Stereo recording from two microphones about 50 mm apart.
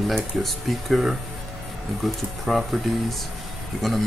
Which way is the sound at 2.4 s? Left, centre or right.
Centre.